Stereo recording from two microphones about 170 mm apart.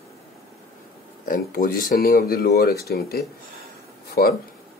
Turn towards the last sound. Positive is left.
turn(degrees=65)  # may be behind; listen again after turning